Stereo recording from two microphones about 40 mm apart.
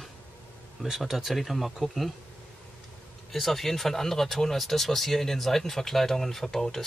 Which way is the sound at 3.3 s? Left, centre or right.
Centre.